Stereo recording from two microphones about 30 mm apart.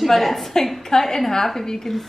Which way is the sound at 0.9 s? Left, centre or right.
Centre.